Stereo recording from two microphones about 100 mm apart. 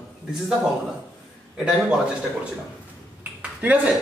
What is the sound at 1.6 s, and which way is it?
Speech, 10° right (ahead or behind).